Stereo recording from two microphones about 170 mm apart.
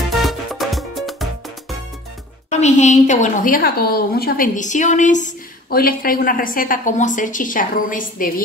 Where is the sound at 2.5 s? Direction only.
45° left (ahead or behind).